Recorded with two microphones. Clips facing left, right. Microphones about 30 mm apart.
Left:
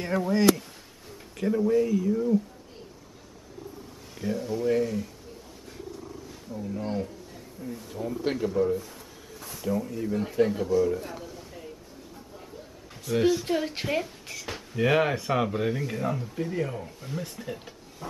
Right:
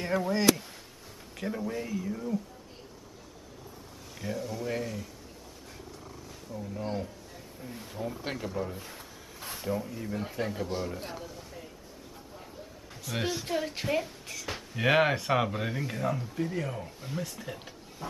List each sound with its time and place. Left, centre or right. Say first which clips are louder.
0.0 s speech: left 3 dB; centre
4.2 s speech: left 6 dB; centre
6.0 s wild animals: left 4 dB; centre
6.6 s speech: left 4 dB; centre
7.6 s speech: left 7 dB; right
8.0 s speech: left 7 dB; centre
9.4 s a sound: right 1 dB; right
9.8 s speech: left 6 dB; centre
11.1 s a sound: left 2 dB; centre
13.1 s speech: left 9 dB; centre
13.5 s a woman's voice: left 3 dB; centre
14.8 s speech: left 1 dB; centre